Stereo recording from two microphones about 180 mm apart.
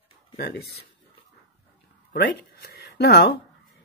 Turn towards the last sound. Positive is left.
turn(degrees=65)  # may be behind; listen again after turning